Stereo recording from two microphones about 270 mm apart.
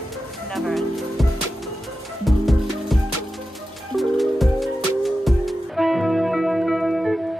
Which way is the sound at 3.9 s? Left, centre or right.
Centre.